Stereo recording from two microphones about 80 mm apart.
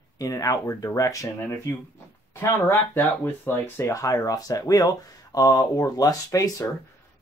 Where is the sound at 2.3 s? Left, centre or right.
Left.